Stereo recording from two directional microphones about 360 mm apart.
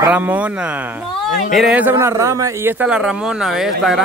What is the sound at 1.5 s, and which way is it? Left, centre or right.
A man's voice, centre.